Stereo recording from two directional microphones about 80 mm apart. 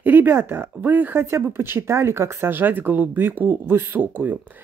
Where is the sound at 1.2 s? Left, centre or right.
Right.